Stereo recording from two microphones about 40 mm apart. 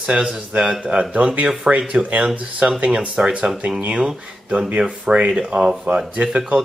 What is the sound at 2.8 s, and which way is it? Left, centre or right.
Speech, right.